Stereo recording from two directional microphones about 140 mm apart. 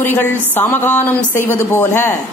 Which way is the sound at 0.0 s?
15° left (ahead or behind).